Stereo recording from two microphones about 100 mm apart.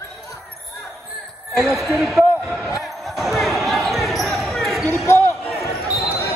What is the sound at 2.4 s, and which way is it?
Basketball bounce, 5° right (ahead or behind).